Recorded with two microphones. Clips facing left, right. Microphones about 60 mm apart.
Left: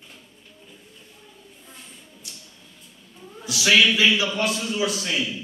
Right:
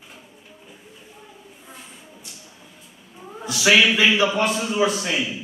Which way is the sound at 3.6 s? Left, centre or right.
Centre.